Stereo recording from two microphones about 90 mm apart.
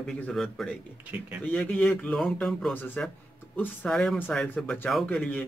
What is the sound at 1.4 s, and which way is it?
A man's voice, 15° left (ahead or behind).